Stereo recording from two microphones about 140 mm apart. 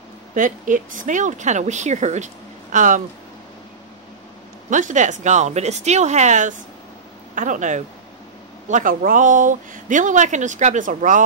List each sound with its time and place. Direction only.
0.3 s speech: 70° right (ahead or behind)
4.6 s speech: 65° right (ahead or behind)